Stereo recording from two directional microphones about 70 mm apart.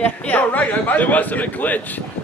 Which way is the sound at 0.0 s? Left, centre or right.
Left.